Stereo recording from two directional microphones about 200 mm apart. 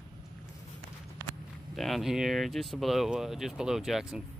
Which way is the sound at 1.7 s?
Centre (ahead or behind).